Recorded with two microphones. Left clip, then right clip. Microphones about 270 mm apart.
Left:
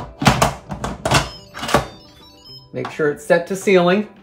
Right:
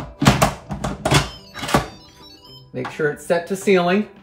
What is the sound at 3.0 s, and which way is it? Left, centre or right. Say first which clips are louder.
Speech: left 4 dB; left.